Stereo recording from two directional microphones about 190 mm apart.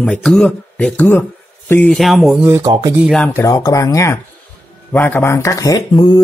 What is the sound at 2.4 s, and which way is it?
Speech, 15° right (ahead or behind).